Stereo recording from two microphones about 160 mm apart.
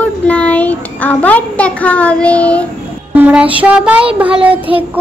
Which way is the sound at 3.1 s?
10° right (ahead or behind).